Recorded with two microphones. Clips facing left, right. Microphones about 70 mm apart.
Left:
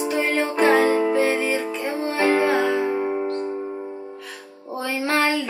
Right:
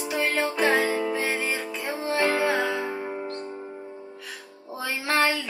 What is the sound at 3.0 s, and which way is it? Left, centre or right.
Music, left.